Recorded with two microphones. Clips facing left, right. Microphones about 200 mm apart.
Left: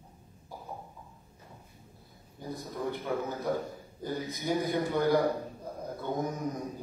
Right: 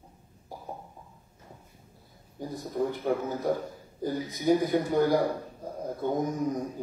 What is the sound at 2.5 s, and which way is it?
A man's voice, 50° right (ahead or behind).